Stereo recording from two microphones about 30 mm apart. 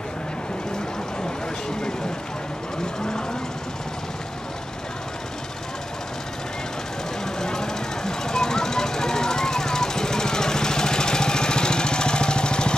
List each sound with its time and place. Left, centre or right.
2.8 s vehicle: left
7.3 s jackhammer: left